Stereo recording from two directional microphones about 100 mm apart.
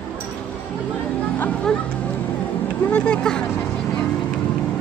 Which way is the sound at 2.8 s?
15° left (ahead or behind).